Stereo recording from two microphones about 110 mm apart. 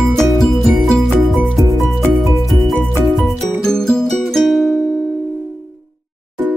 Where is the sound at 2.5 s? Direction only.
Centre (ahead or behind).